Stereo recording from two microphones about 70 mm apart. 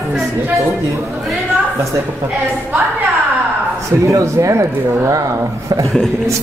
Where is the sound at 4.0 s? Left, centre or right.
Right.